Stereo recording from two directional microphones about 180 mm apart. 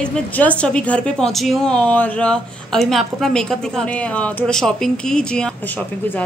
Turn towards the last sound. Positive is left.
turn(degrees=5)  # may be behind; listen again after turning